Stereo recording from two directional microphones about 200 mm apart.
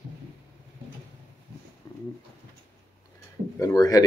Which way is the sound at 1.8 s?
15° left (ahead or behind).